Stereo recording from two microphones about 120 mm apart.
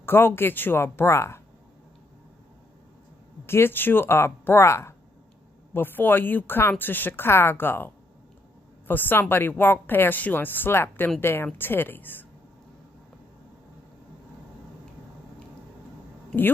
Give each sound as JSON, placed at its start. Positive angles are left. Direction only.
{"t": 0.0, "sound": "speech", "side_deg": 20}
{"t": 3.4, "sound": "a woman's voice", "side_deg": 20}